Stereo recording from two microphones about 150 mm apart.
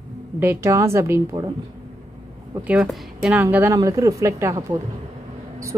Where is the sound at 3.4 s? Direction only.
15° right (ahead or behind).